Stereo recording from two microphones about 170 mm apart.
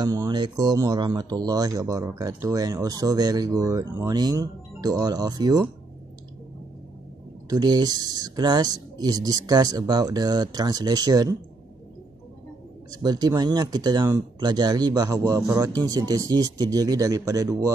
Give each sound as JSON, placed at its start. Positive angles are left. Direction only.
{"t": 0.0, "sound": "speech", "side_deg": -20}
{"t": 7.4, "sound": "speech", "side_deg": -25}
{"t": 13.0, "sound": "speech", "side_deg": -25}